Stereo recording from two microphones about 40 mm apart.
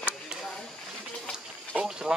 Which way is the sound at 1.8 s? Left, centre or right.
Centre.